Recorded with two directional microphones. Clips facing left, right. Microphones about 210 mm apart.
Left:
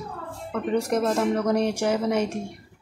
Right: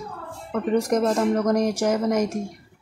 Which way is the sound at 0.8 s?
15° right (ahead or behind).